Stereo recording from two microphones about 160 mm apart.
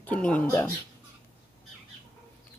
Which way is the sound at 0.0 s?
10° left (ahead or behind).